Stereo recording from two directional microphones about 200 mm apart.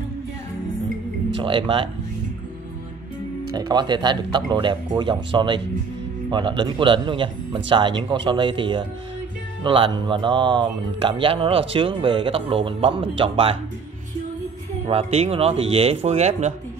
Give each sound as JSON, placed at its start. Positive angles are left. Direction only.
{"t": 1.3, "sound": "speech", "side_deg": -25}
{"t": 3.5, "sound": "speech", "side_deg": -20}
{"t": 14.9, "sound": "speech", "side_deg": -30}